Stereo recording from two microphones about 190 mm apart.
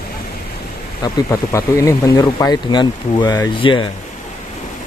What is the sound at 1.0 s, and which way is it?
Speech, 15° left (ahead or behind).